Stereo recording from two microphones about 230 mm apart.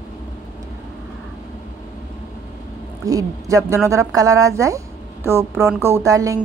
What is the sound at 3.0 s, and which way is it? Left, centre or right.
A woman's voice, centre.